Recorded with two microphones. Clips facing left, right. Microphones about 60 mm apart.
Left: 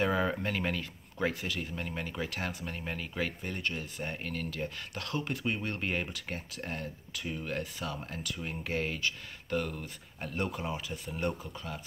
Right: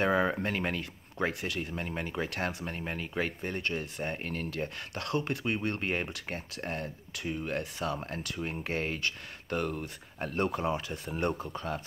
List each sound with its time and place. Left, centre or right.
0.1 s speech: centre
2.2 s speech: right
2.6 s speech: right
4.9 s speech: right
5.4 s speech: right
8.5 s speech: right
10.3 s speech: right